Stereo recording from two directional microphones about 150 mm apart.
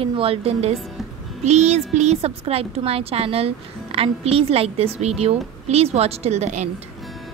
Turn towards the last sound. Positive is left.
turn(degrees=-50)  # may be behind; listen again after turning